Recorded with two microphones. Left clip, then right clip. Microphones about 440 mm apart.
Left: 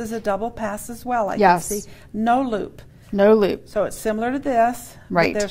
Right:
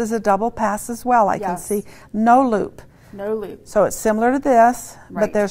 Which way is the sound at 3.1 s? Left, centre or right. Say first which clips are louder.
Left 10 dB; left.